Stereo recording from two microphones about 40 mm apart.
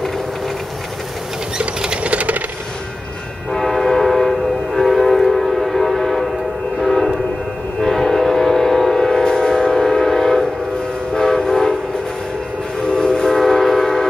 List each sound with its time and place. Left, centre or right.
2.0 s coin: right
3.5 s train: centre
12.9 s train: centre